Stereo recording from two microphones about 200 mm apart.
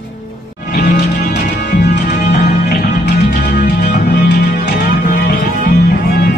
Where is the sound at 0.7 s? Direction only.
50° left (ahead or behind).